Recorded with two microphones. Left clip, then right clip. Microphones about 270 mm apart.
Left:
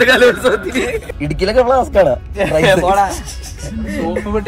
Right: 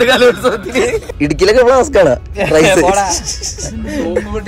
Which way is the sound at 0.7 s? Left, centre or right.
Right.